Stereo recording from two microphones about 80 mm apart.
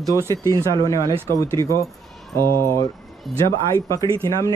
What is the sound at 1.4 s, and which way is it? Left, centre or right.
Speech, left.